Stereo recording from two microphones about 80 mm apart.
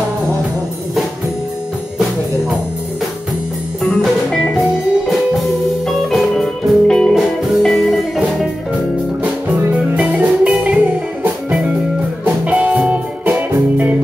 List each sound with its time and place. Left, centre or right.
4.6 s music: centre
9.7 s music: centre